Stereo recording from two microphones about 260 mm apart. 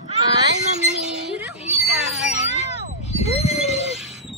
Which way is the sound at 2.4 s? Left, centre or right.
Left.